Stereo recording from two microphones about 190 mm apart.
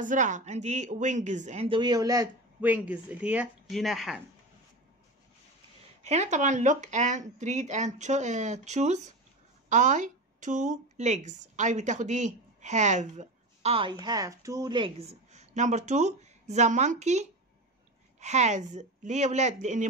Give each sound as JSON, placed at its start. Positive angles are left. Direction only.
{"t": 0.0, "sound": "speech", "side_deg": -40}
{"t": 6.0, "sound": "speech", "side_deg": -35}